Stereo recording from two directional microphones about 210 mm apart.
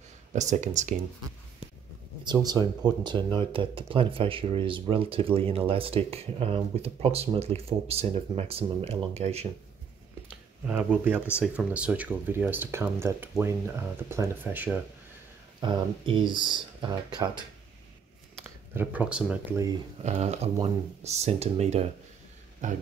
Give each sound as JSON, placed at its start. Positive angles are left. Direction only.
{"t": 0.3, "sound": "speech", "side_deg": -35}
{"t": 2.4, "sound": "speech", "side_deg": -20}
{"t": 11.3, "sound": "speech", "side_deg": -5}
{"t": 15.6, "sound": "speech", "side_deg": -25}
{"t": 18.8, "sound": "speech", "side_deg": -5}
{"t": 20.0, "sound": "speech", "side_deg": -30}